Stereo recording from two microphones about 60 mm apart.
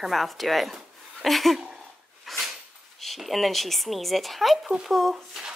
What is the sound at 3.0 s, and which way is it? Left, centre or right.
A woman's voice, centre.